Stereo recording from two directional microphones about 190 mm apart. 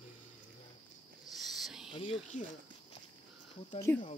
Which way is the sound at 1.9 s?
30° left (ahead or behind).